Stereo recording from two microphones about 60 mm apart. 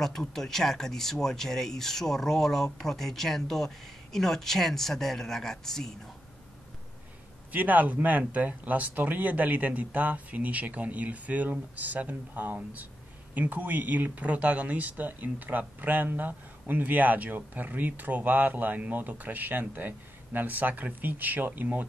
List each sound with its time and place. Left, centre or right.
0.0 s speech: centre
7.5 s speech: right